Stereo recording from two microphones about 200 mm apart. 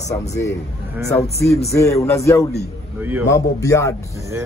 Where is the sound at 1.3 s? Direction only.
15° left (ahead or behind).